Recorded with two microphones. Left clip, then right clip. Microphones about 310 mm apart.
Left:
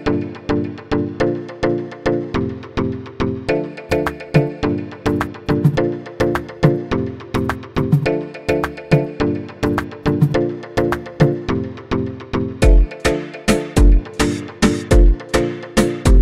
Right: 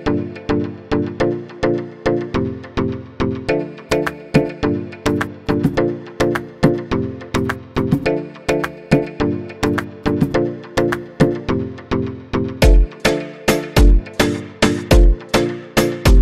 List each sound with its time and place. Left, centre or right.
0.0 s music: centre